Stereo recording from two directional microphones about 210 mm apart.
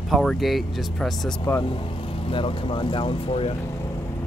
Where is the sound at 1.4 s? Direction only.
15° left (ahead or behind).